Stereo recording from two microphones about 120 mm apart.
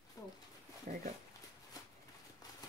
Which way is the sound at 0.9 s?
90° right.